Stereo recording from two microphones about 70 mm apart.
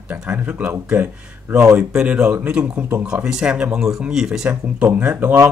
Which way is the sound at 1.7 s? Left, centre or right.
Centre.